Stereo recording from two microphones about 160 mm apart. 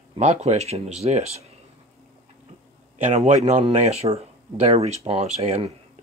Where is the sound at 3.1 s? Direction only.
45° right (ahead or behind).